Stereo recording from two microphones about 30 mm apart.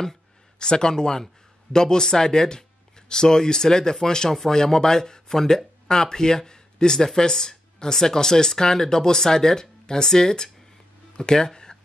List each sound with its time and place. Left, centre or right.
0.6 s speech: left